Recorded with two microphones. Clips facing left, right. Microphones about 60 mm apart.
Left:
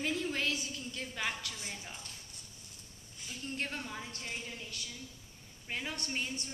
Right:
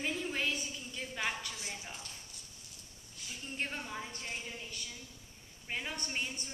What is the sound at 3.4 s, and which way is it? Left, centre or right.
A woman's voice, centre.